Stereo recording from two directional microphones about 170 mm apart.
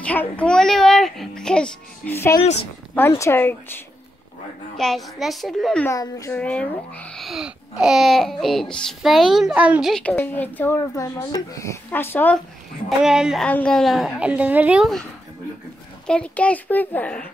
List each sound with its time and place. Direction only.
0.0 s a child's voice: 10° left (ahead or behind)
4.7 s speech: centre (ahead or behind)
5.9 s a child's voice: 20° left (ahead or behind)
6.3 s speech: 5° left (ahead or behind)
13.0 s speech: 5° right (ahead or behind)
16.1 s a child's voice: 5° left (ahead or behind)